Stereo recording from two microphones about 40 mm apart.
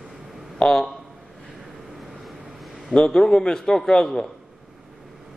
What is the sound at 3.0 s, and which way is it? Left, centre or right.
A man's voice, centre.